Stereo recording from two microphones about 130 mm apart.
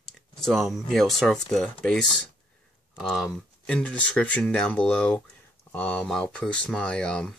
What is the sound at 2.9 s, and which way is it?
Speech, centre (ahead or behind).